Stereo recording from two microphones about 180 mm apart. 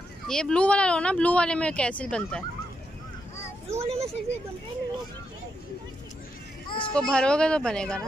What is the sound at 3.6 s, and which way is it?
Speech, 35° right (ahead or behind).